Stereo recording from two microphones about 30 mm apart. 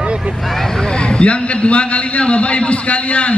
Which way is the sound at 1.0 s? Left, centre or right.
Left.